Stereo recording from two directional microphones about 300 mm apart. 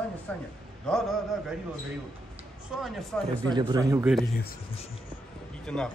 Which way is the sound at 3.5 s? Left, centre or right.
Centre.